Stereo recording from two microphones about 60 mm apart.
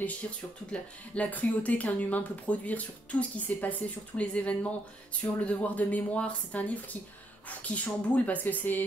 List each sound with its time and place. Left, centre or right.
0.7 s speech: left